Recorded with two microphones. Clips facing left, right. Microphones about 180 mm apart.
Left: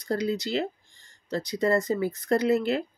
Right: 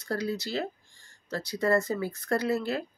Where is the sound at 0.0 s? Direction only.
20° left (ahead or behind).